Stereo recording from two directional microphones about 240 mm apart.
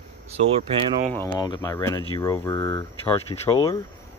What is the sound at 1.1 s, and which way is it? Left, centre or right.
Speech, centre.